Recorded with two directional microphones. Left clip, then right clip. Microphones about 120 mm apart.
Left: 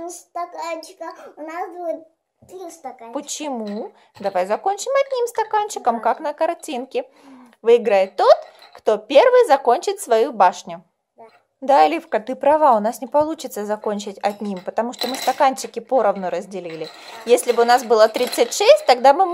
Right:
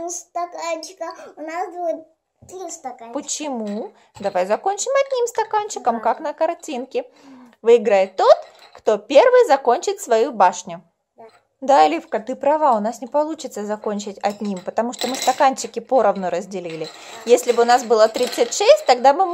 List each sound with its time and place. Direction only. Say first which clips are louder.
0.0 s a child's voice: right 3 dB; 25° right (ahead or behind)
3.1 s a woman's voice: even; 10° left (ahead or behind)
15.0 s speech: right 1 dB; 10° right (ahead or behind)
15.3 s a woman's voice: right 1 dB; centre (ahead or behind)